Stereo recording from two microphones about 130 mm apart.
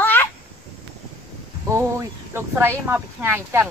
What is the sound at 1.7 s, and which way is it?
Speech, 20° right (ahead or behind).